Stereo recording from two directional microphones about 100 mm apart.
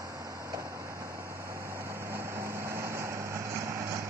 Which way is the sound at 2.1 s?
25° right (ahead or behind).